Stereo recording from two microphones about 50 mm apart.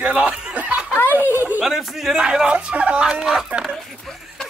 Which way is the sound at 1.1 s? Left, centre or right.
Right.